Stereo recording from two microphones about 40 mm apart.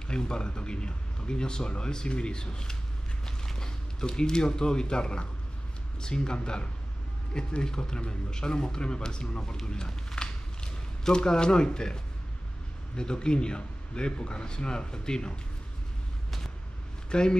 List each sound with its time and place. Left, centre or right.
0.1 s speech: left
10.2 s a sound: centre
12.9 s speech: left
17.1 s speech: left